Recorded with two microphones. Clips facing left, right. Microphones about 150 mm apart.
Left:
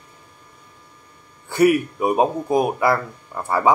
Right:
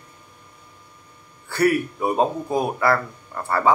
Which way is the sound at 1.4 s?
15° left (ahead or behind).